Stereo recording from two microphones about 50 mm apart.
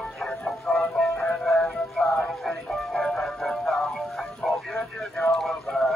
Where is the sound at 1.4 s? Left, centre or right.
Centre.